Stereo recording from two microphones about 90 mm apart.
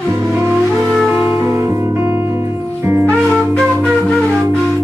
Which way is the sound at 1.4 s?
35° right (ahead or behind).